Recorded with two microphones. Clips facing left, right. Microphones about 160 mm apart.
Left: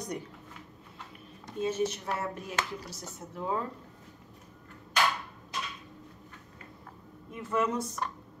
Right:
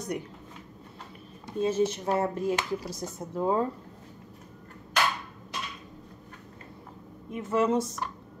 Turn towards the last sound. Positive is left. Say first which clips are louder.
# right 5 dB
turn(degrees=-25)  # may be behind; listen again after turning